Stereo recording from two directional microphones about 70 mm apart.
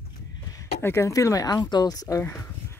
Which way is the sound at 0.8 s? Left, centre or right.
Left.